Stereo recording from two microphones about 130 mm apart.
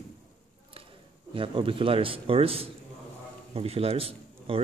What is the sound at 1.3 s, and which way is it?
A man's voice, 40° right (ahead or behind).